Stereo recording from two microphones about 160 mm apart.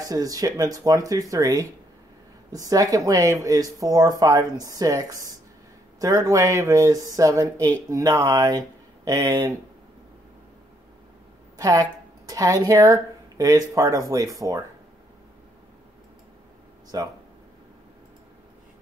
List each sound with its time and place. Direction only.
0.0 s speech: 20° right (ahead or behind)
11.5 s speech: 20° right (ahead or behind)
16.9 s speech: 25° right (ahead or behind)